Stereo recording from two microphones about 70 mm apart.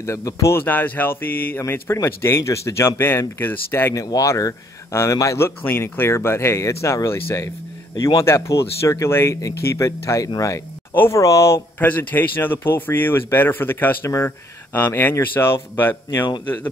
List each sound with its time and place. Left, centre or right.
0.0 s speech: left
0.6 s speech: left
1.6 s speech: left
3.9 s speech: left
5.4 s speech: left
11.8 s speech: left
14.0 s speech: left
14.9 s speech: left